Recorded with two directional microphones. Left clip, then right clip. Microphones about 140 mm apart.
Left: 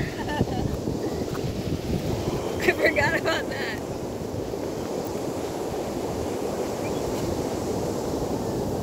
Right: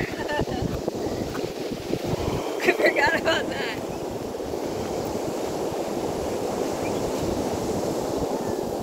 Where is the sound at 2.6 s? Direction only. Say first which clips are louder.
Right 2 dB; 45° left (ahead or behind).